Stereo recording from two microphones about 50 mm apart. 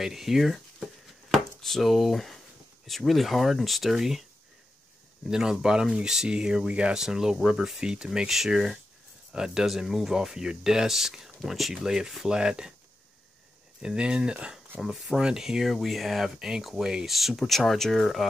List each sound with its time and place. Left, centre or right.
0.0 s speech: centre
1.3 s chopping: centre
2.9 s speech: centre
5.3 s speech: centre
7.0 s speech: centre
13.7 s speech: right; by 18.2 s centre